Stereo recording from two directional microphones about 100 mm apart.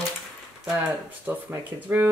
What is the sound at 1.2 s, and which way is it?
Speech, 20° right (ahead or behind).